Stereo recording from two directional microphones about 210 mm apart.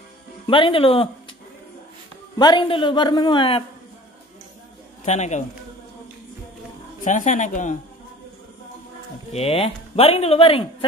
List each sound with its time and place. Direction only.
0.5 s speech: 25° left (ahead or behind)
2.3 s speech: 20° left (ahead or behind)
5.0 s a woman's voice: 35° left (ahead or behind)
7.0 s a woman's voice: 35° left (ahead or behind)
9.3 s speech: 30° left (ahead or behind)